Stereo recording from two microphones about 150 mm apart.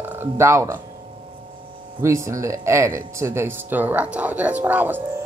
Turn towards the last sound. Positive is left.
turn(degrees=-10)  # may be behind; listen again after turning